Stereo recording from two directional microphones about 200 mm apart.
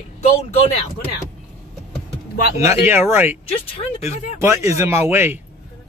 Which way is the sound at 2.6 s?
15° right (ahead or behind).